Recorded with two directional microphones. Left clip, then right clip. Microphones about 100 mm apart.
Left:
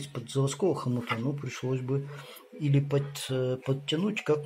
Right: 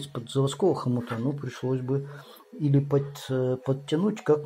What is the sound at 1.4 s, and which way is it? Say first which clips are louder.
Speech: right 3 dB; 15° right (ahead or behind).